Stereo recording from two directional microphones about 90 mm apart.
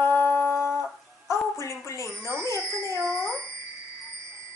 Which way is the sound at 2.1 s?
35° right (ahead or behind).